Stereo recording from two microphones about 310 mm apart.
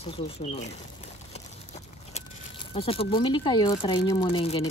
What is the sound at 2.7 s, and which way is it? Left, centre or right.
Speech, centre.